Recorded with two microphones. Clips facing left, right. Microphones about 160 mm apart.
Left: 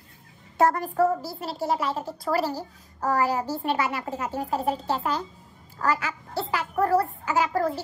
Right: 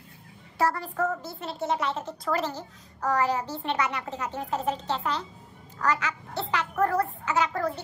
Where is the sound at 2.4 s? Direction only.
40° left (ahead or behind).